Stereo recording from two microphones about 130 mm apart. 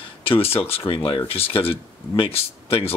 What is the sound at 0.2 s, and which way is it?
Speech, 45° left (ahead or behind).